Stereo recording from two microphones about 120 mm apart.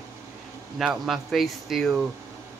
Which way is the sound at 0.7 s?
Centre (ahead or behind).